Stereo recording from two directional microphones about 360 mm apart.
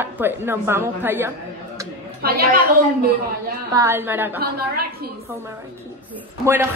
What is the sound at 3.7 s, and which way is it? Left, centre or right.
Speech, centre.